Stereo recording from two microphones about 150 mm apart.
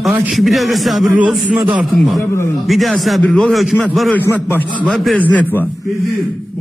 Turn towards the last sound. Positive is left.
turn(degrees=10)  # may be behind; listen again after turning